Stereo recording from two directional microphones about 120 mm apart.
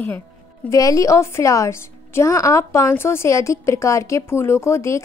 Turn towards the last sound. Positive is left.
turn(degrees=25)  # may be behind; listen again after turning